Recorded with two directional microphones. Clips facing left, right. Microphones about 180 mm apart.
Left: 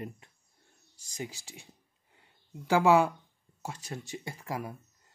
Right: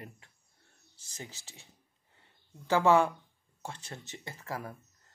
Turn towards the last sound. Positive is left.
turn(degrees=15)  # may be behind; listen again after turning